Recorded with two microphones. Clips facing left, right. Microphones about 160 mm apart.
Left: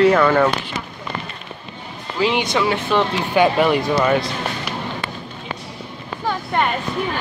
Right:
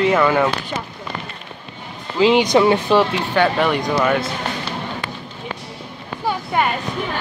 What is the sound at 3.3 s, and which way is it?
Speech, 10° left (ahead or behind).